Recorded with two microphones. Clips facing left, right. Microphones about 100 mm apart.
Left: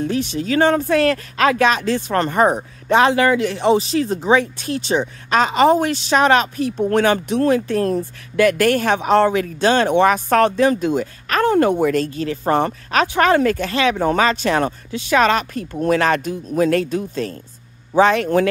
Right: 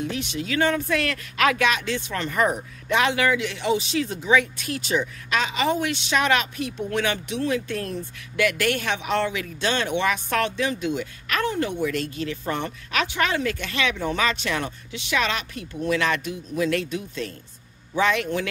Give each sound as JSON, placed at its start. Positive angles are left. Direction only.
{"t": 0.0, "sound": "speech", "side_deg": 35}